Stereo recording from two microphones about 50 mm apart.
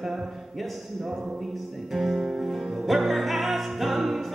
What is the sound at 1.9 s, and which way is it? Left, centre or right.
Music, centre.